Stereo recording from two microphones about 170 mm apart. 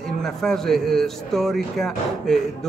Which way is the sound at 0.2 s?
Centre (ahead or behind).